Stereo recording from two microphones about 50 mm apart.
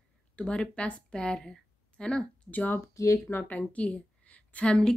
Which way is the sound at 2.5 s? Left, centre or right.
Left.